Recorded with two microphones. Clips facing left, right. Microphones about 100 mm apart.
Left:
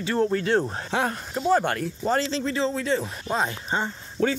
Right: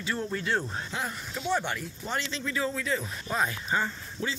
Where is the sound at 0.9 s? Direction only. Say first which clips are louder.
Left 11 dB; 75° left (ahead or behind).